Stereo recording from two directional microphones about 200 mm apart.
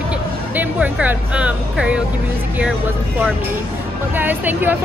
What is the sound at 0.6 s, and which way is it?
Speech, 5° right (ahead or behind).